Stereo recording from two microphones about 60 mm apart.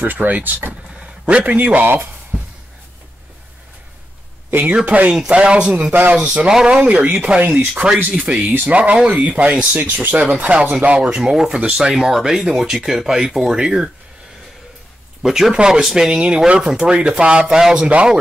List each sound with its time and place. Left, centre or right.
0.0 s speech: right
2.3 s a sound: centre
4.5 s speech: right
4.8 s speech: right
8.1 s speech: centre
8.5 s speech: right
11.1 s speech: centre
15.2 s speech: centre